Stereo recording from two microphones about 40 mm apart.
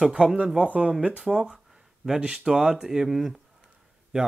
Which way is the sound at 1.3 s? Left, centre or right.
Centre.